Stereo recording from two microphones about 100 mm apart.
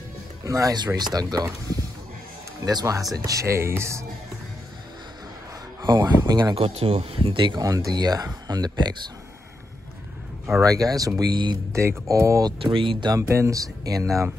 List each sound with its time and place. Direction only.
0.5 s speech: 35° right (ahead or behind)
5.9 s speech: 40° right (ahead or behind)
6.5 s speech: 70° right (ahead or behind); by 7.6 s 55° right (ahead or behind)
7.6 s speech: 40° right (ahead or behind)
10.6 s speech: 35° right (ahead or behind)
12.4 s speech: 55° right (ahead or behind)
13.3 s speech: 30° right (ahead or behind)